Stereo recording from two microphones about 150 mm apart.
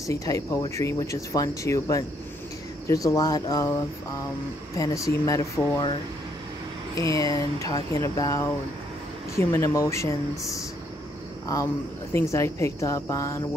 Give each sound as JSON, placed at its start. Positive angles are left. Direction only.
{"t": 0.0, "sound": "speech", "side_deg": 20}
{"t": 7.0, "sound": "speech", "side_deg": 20}
{"t": 12.1, "sound": "speech", "side_deg": 20}